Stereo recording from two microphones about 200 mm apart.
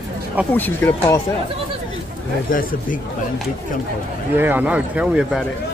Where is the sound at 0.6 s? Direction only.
10° left (ahead or behind).